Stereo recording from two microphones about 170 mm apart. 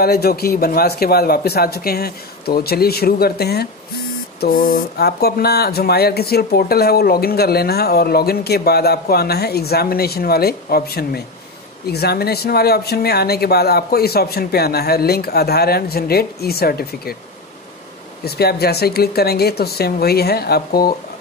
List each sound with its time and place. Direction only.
0.0 s speech: 65° left (ahead or behind)
18.2 s speech: 65° left (ahead or behind)